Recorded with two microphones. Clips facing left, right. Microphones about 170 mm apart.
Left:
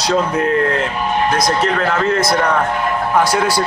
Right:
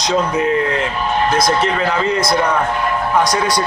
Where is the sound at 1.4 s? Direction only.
Centre (ahead or behind).